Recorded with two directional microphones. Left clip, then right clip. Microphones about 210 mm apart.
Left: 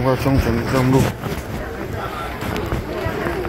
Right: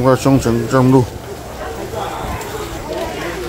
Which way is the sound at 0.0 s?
50° right (ahead or behind).